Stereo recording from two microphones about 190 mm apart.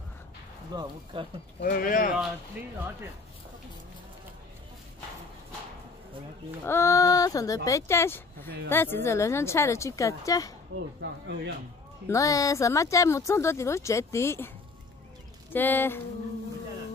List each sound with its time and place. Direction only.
0.7 s speech: 20° right (ahead or behind)
1.6 s speech: 50° left (ahead or behind)
6.6 s speech: 15° left (ahead or behind)
11.0 s speech: 65° right (ahead or behind)
12.1 s speech: 15° left (ahead or behind)
15.5 s speech: 10° left (ahead or behind)